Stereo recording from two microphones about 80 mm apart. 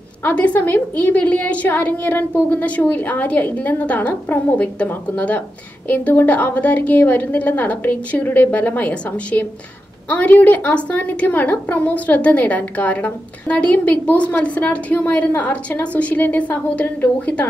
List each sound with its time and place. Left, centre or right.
0.2 s a woman's voice: left